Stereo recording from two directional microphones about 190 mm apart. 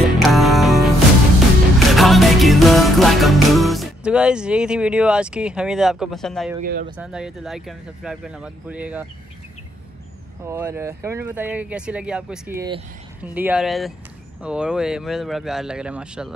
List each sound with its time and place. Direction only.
0.0 s music: centre (ahead or behind)
6.6 s speech: 50° right (ahead or behind)
7.0 s speech: 5° right (ahead or behind)
10.4 s speech: 15° right (ahead or behind)